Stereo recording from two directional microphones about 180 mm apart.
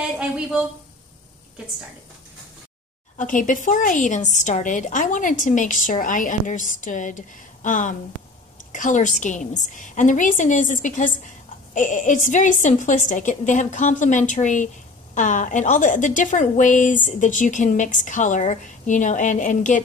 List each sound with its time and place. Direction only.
3.2 s a woman's voice: 45° left (ahead or behind)